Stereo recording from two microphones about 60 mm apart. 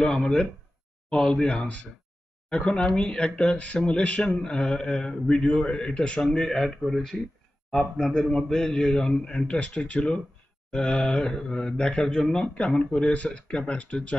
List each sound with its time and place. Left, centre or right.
0.0 s speech: centre